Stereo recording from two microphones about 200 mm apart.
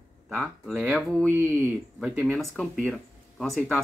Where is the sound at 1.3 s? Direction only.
15° right (ahead or behind).